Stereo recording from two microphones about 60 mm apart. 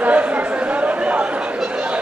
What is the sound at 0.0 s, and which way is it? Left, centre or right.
Chatter, right.